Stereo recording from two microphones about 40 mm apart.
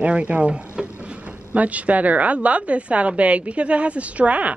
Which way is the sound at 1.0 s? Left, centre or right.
Right.